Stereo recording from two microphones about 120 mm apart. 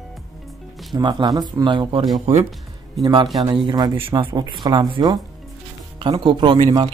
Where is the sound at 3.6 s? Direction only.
35° right (ahead or behind).